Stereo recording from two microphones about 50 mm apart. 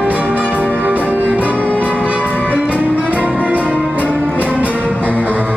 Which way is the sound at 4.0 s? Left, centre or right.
Left.